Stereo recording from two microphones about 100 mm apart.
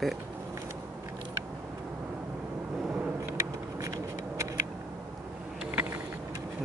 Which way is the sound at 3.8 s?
35° right (ahead or behind).